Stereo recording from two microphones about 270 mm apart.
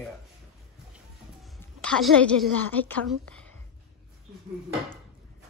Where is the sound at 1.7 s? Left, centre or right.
Centre.